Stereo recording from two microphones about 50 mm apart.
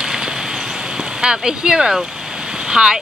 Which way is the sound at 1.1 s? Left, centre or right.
Centre.